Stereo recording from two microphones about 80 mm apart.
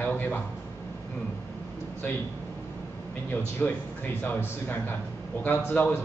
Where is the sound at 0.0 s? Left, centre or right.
Left.